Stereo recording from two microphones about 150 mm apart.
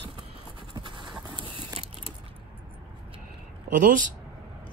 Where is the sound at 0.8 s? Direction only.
30° right (ahead or behind).